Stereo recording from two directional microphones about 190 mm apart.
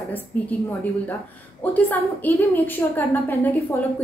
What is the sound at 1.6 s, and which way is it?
A woman's voice, 10° left (ahead or behind).